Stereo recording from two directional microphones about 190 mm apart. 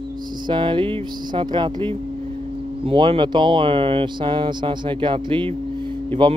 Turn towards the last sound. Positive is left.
turn(degrees=-25)  # may be behind; listen again after turning